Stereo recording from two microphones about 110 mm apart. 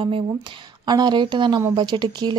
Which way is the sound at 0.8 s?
40° right (ahead or behind).